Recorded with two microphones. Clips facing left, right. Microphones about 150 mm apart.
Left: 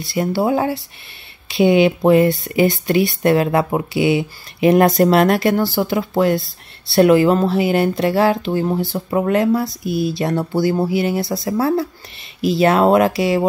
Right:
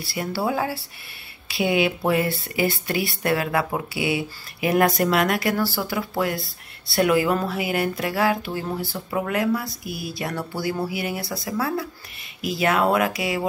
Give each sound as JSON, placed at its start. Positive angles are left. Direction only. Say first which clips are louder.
{"t": 0.0, "sound": "speech", "louder": "left 7 dB", "side_deg": 20}